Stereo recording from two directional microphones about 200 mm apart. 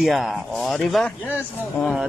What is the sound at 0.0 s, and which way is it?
Speech, centre (ahead or behind).